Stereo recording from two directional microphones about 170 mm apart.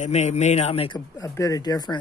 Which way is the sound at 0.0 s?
40° left (ahead or behind).